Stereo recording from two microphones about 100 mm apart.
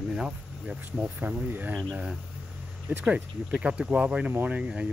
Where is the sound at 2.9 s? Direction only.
20° right (ahead or behind).